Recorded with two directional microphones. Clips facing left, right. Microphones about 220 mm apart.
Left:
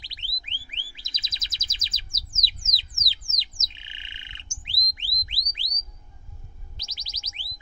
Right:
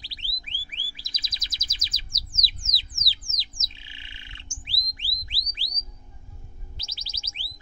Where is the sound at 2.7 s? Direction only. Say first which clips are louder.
Even; 20° left (ahead or behind).